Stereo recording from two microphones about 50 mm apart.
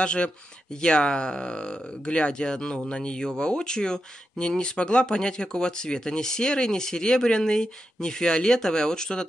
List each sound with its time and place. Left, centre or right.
0.0 s speech: left